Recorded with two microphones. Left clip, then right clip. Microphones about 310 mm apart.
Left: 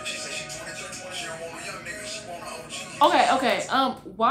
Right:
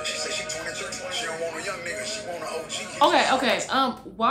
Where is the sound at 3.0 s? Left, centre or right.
Centre.